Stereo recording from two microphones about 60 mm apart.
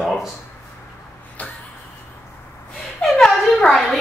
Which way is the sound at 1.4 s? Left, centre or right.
Left.